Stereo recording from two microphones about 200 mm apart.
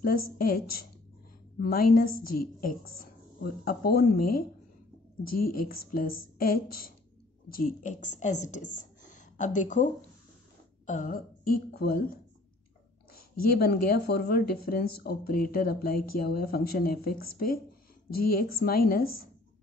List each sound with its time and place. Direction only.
0.0 s a woman's voice: 45° left (ahead or behind)
10.9 s speech: 40° left (ahead or behind)